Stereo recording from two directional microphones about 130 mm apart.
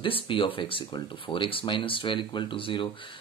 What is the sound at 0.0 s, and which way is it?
Speech, 40° left (ahead or behind).